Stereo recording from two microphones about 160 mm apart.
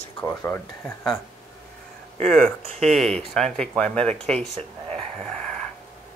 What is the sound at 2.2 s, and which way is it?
Speech, 5° left (ahead or behind).